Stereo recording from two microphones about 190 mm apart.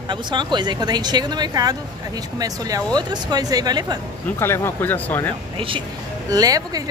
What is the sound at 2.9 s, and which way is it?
A woman's voice, 20° right (ahead or behind).